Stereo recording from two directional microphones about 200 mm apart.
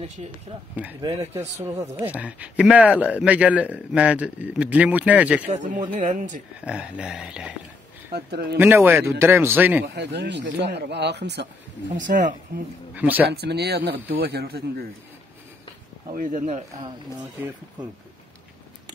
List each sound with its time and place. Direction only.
0.5 s speech: 30° right (ahead or behind)
1.0 s a man's voice: 15° right (ahead or behind)
5.5 s speech: 40° right (ahead or behind)
6.6 s a sound: 5° right (ahead or behind)
8.1 s speech: 55° right (ahead or behind)
8.5 s a man's voice: 10° right (ahead or behind)
9.9 s speech: 60° right (ahead or behind)
12.1 s speech: 40° right (ahead or behind)
12.9 s a man's voice: 10° right (ahead or behind)
13.3 s speech: 55° right (ahead or behind)
16.2 s speech: 40° right (ahead or behind)